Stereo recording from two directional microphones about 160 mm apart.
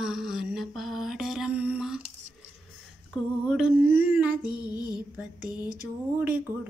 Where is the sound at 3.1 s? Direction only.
5° right (ahead or behind).